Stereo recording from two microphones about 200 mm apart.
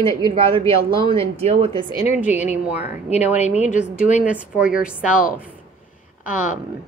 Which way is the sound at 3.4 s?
35° left (ahead or behind).